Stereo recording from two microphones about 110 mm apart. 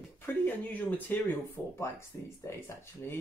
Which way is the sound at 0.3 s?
15° left (ahead or behind).